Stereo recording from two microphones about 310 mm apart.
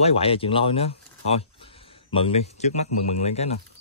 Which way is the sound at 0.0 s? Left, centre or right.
Centre.